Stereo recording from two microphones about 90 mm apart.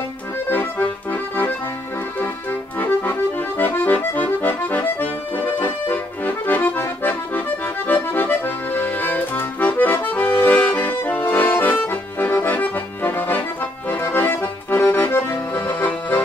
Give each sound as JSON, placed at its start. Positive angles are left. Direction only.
{"t": 0.5, "sound": "accordion", "side_deg": 20}
{"t": 2.8, "sound": "accordion", "side_deg": 20}